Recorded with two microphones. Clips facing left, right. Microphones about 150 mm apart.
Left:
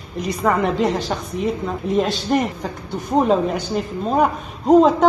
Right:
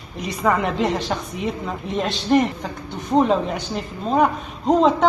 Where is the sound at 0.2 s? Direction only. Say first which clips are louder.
Left 2 dB; centre (ahead or behind).